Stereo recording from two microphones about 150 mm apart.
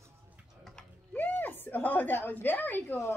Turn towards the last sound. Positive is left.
turn(degrees=15)  # may be behind; listen again after turning